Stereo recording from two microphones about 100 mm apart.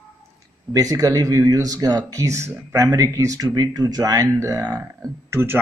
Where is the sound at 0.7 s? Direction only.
35° right (ahead or behind).